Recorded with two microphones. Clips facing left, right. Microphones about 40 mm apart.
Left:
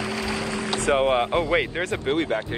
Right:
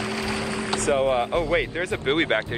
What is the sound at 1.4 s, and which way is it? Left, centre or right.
Speech, centre.